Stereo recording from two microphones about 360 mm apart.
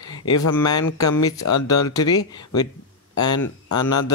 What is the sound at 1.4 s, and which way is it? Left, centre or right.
Speech, left.